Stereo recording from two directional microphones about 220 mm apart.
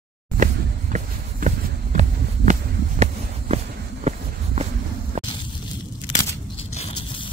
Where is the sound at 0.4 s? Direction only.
35° right (ahead or behind).